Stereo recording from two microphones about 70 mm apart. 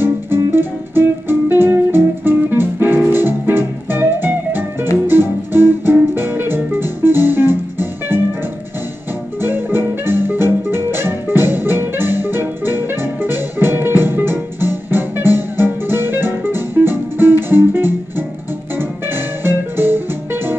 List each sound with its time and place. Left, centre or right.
0.5 s music: right
9.4 s music: right
19.4 s music: right